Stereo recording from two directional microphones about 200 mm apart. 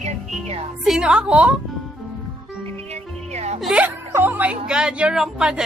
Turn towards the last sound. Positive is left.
turn(degrees=-5)  # may be behind; listen again after turning